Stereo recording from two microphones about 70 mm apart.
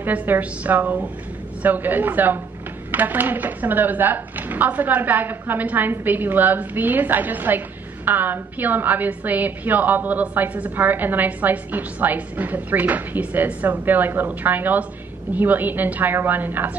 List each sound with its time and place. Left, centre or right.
0.0 s speech: right